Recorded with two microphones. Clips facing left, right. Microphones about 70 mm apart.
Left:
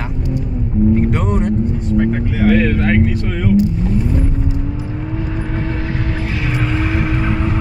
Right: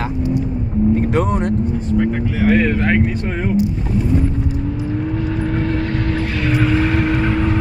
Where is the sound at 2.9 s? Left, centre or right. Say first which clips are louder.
Left 1 dB; centre.